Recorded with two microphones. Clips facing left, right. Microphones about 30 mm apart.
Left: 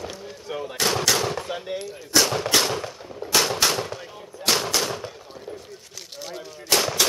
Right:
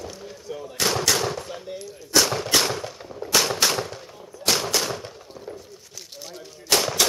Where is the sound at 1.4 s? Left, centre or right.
Left.